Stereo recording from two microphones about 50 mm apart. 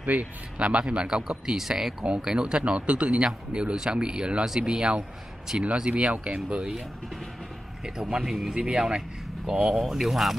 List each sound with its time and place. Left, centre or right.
0.0 s speech: right
0.6 s speech: right
5.6 s speech: right
7.8 s speech: centre
8.5 s speech: centre